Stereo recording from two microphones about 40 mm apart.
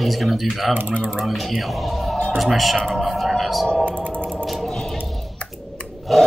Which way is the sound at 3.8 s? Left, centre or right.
Right.